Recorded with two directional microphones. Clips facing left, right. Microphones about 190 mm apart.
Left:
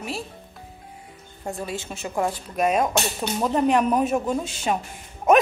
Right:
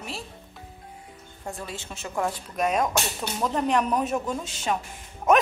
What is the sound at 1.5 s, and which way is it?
Speech, 10° left (ahead or behind).